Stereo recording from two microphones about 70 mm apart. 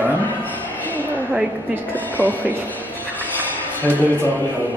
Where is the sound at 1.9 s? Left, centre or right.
Left.